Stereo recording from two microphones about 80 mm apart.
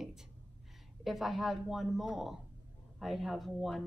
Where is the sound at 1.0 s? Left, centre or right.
Centre.